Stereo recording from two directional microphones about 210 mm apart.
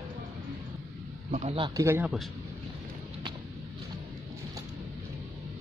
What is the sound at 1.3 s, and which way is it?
Speech, 30° right (ahead or behind).